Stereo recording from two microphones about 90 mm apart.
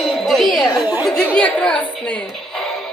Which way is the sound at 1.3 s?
15° left (ahead or behind).